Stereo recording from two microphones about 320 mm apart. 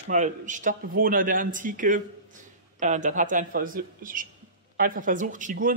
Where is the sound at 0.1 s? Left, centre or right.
Right.